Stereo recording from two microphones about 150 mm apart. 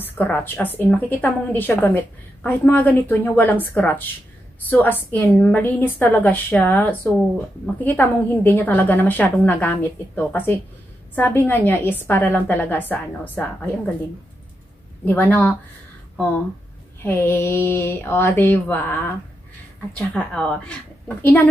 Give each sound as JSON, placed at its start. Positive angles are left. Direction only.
{"t": 0.0, "sound": "a woman's voice", "side_deg": 10}
{"t": 15.0, "sound": "a woman's voice", "side_deg": 10}
{"t": 17.0, "sound": "a woman's voice", "side_deg": 15}